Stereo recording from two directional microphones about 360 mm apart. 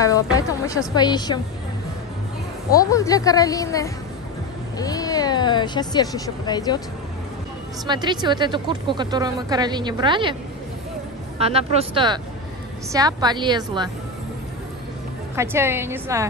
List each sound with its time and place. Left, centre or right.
0.0 s a woman's voice: centre
2.7 s a woman's voice: centre
7.8 s a woman's voice: centre
11.3 s a woman's voice: centre
15.3 s a woman's voice: centre